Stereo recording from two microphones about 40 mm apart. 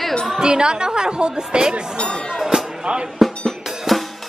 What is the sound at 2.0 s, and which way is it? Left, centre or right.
Speech, left.